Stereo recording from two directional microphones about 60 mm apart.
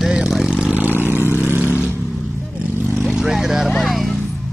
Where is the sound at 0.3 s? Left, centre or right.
Centre.